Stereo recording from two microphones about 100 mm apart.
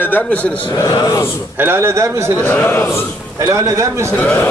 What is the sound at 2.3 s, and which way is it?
Speech, 15° left (ahead or behind).